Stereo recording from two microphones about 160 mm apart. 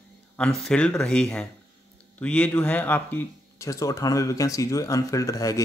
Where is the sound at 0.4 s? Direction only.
5° left (ahead or behind).